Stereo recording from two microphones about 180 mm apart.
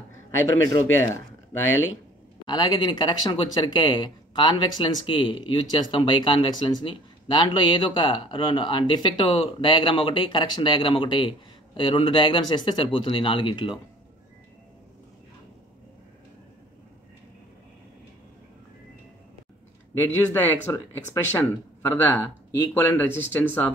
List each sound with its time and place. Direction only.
0.9 s speech: 15° left (ahead or behind)
1.7 s speech: 90° left
2.4 s speech: 25° left (ahead or behind)
20.0 s speech: 10° left (ahead or behind)